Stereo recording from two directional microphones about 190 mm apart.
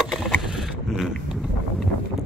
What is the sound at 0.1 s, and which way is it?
Vehicle, centre (ahead or behind).